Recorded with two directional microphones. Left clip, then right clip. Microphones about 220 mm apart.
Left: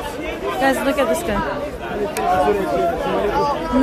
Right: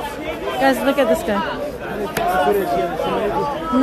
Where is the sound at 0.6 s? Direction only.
10° right (ahead or behind).